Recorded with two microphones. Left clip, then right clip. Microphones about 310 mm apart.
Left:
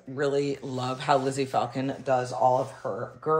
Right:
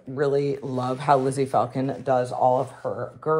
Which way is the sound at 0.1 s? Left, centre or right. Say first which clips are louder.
Right 4 dB; right.